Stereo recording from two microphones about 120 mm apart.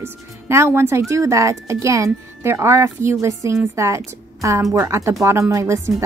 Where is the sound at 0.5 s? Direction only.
20° right (ahead or behind).